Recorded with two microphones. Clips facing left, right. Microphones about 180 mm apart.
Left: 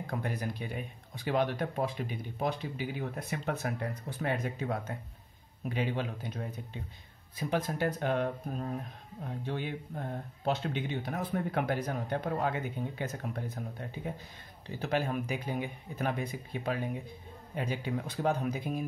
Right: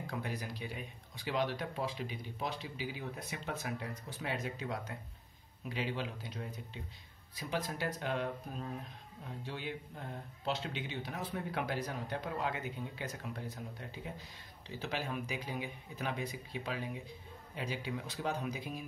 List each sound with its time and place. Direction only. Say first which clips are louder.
0.0 s speech: left 5 dB; 55° left (ahead or behind)